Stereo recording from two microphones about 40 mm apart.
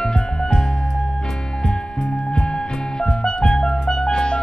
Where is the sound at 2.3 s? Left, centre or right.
Left.